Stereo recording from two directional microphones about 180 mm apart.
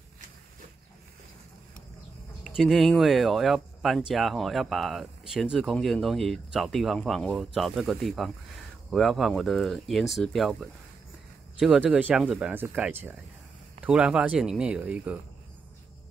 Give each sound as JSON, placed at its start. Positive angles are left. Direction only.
{"t": 2.4, "sound": "speech", "side_deg": 0}